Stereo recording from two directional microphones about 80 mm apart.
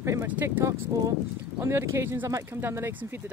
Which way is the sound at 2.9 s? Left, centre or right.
Right.